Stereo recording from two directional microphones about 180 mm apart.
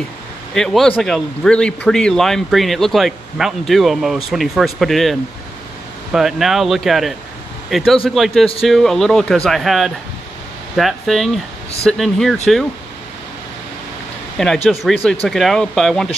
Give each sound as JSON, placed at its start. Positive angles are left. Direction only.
{"t": 0.6, "sound": "speech", "side_deg": 5}
{"t": 6.1, "sound": "speech", "side_deg": 0}
{"t": 14.7, "sound": "speech", "side_deg": 0}